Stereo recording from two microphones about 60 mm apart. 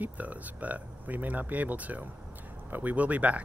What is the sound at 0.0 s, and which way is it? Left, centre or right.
Speech, right.